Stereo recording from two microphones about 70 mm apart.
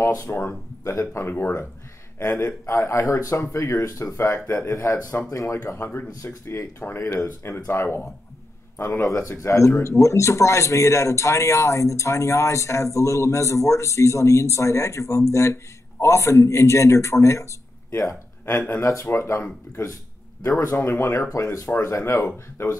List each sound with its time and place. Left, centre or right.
0.3 s a man's voice: left
9.0 s speech: left
20.4 s speech: left
21.3 s speech: left